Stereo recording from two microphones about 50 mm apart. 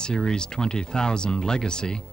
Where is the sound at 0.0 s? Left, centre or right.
Centre.